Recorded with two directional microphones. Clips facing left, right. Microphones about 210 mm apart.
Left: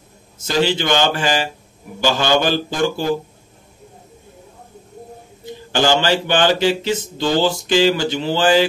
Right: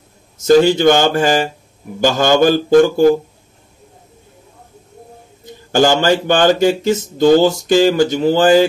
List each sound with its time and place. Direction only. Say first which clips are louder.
0.4 s speech: right 9 dB; 50° right (ahead or behind)
5.7 s speech: right 4 dB; 45° right (ahead or behind)